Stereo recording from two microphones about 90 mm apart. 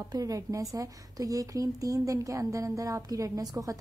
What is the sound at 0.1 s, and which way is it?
A woman's voice, 40° right (ahead or behind).